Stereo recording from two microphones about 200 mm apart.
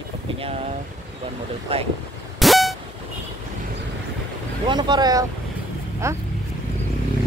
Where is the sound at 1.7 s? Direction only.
30° right (ahead or behind).